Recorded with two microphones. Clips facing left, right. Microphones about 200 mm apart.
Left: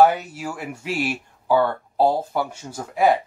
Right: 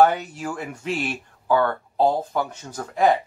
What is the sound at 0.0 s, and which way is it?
Speech, 5° left (ahead or behind).